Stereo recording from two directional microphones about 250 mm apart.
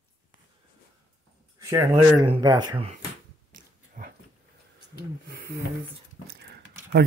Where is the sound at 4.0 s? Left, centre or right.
Right.